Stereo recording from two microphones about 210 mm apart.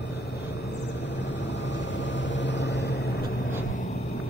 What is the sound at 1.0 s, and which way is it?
Vehicle, 60° left (ahead or behind).